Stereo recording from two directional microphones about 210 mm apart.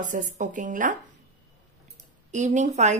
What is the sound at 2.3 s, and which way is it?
Speech, 35° right (ahead or behind).